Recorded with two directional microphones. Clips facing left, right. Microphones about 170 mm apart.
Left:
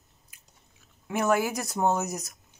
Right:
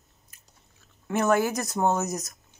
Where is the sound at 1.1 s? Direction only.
10° left (ahead or behind).